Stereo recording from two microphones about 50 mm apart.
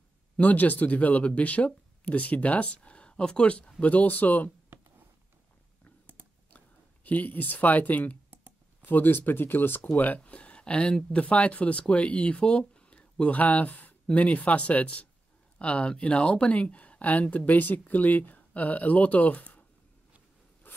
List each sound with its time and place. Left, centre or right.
0.4 s speech: left
7.1 s speech: left
20.6 s zipper: left